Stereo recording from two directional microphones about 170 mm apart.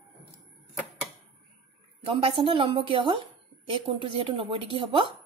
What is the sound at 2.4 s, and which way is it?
Speech, 35° right (ahead or behind).